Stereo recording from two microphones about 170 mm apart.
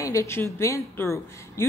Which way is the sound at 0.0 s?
20° left (ahead or behind).